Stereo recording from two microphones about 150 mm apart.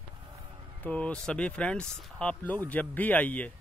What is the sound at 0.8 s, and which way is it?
A man's voice, 10° left (ahead or behind).